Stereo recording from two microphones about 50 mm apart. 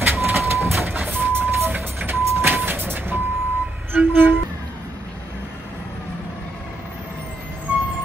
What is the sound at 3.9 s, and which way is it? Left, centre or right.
Music, right.